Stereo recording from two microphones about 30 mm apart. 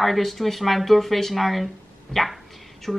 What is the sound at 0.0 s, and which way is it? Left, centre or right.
Speech, centre.